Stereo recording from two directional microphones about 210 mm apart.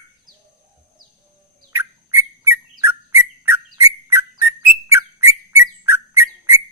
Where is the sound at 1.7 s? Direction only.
10° right (ahead or behind).